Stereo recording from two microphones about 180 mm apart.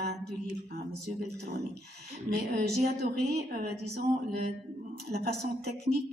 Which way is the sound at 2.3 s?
60° right (ahead or behind).